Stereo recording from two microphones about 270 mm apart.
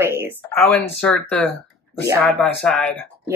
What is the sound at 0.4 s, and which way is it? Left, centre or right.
Speech, centre.